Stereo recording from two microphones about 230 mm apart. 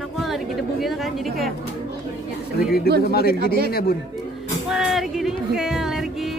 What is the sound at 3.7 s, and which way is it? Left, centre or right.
Speech, left.